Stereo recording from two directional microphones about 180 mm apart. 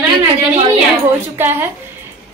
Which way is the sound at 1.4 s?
10° right (ahead or behind).